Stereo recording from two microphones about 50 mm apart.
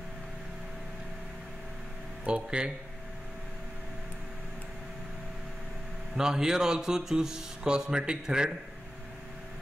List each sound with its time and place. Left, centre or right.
2.2 s speech: right
6.1 s speech: centre